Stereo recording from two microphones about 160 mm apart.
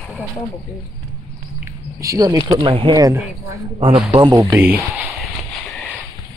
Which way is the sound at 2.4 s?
30° right (ahead or behind).